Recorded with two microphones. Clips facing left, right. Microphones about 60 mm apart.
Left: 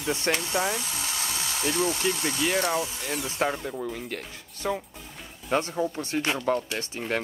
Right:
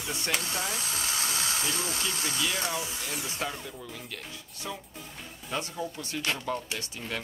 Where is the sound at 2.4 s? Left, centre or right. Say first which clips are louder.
Left 5 dB; left.